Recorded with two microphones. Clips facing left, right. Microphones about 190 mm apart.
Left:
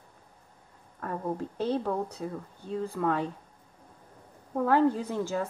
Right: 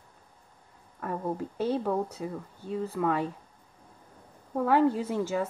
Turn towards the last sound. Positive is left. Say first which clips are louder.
# right 2 dB
turn(degrees=-5)  # may be behind; listen again after turning